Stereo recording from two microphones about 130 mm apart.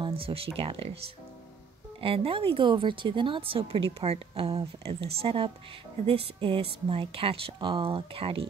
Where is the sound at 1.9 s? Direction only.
45° right (ahead or behind).